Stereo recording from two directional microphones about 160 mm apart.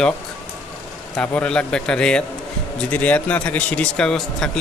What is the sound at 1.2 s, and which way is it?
Speech, 10° left (ahead or behind).